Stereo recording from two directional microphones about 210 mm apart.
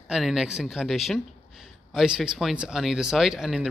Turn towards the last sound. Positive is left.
turn(degrees=0)  # may be behind; listen again after turning